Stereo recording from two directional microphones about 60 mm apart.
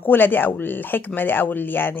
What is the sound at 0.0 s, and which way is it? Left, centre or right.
A woman's voice, left.